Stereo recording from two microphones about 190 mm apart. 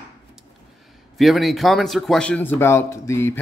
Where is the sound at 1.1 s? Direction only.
Centre (ahead or behind).